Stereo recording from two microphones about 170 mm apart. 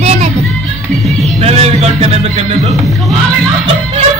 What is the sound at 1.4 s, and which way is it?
Music, 40° right (ahead or behind).